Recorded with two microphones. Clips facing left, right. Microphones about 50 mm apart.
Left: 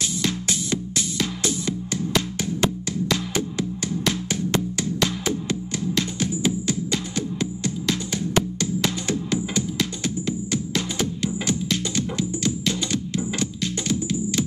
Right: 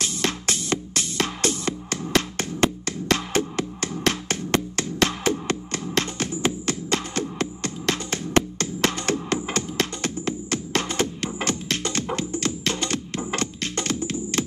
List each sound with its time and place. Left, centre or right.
0.0 s music: right